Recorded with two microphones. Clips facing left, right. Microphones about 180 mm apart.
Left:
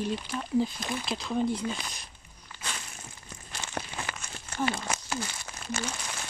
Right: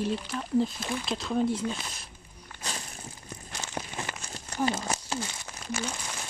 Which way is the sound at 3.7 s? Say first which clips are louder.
Even; 25° right (ahead or behind).